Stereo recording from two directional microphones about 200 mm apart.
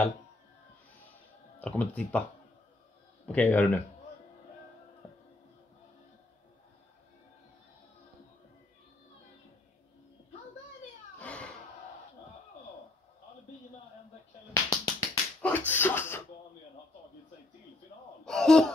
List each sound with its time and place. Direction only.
1.6 s speech: 5° left (ahead or behind)
3.3 s speech: 10° left (ahead or behind)
11.1 s cat: 5° left (ahead or behind)
14.5 s finger snapping: 15° left (ahead or behind)
18.2 s wail: 5° left (ahead or behind)